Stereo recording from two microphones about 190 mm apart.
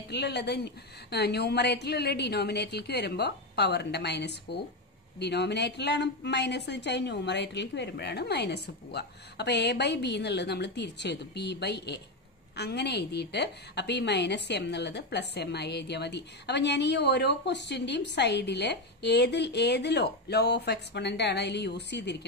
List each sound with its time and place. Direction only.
0.1 s a woman's voice: 60° left (ahead or behind)